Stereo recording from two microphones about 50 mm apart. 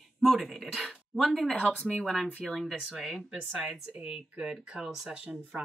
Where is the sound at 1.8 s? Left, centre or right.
Left.